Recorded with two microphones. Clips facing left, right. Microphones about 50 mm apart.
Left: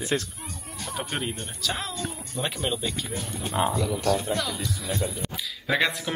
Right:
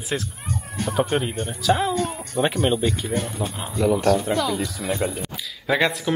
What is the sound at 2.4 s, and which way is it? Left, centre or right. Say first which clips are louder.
Speech: right 9 dB; right.